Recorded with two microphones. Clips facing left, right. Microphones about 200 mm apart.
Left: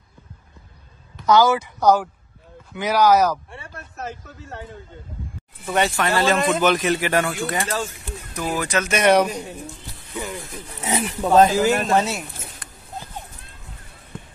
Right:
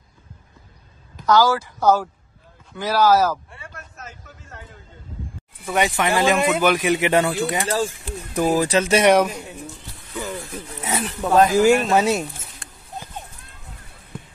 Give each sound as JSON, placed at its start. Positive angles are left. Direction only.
{"t": 1.2, "sound": "a woman's voice", "side_deg": 20}
{"t": 3.7, "sound": "a sound", "side_deg": 35}
{"t": 5.7, "sound": "speech", "side_deg": -15}
{"t": 7.6, "sound": "speech", "side_deg": -30}
{"t": 9.0, "sound": "a man's voice", "side_deg": -5}
{"t": 10.8, "sound": "speech", "side_deg": 15}
{"t": 11.5, "sound": "speech", "side_deg": -10}